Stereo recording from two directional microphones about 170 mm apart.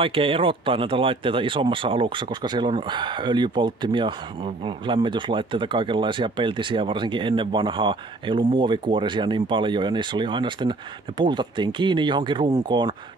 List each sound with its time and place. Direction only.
0.0 s speech: 30° right (ahead or behind)